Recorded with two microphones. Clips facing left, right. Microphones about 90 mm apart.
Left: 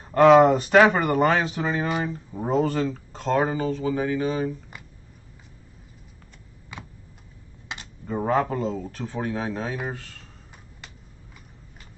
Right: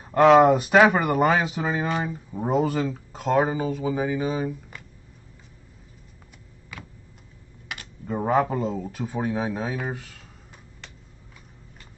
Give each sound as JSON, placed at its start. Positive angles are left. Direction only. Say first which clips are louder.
{"t": 0.0, "sound": "speech", "louder": "left 1 dB", "side_deg": -5}
{"t": 6.7, "sound": "a sound", "louder": "left 1 dB", "side_deg": 20}
{"t": 7.6, "sound": "typing", "louder": "even", "side_deg": 25}
{"t": 8.1, "sound": "speech", "louder": "right 1 dB", "side_deg": -5}